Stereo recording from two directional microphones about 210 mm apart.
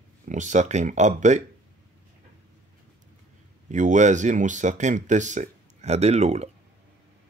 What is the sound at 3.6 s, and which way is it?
Speech, 35° right (ahead or behind).